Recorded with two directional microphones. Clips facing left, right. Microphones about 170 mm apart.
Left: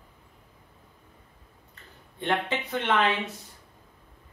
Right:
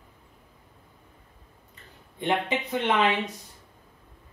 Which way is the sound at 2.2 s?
15° right (ahead or behind).